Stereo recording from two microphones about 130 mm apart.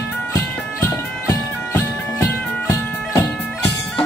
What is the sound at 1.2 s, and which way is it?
Music, 20° left (ahead or behind).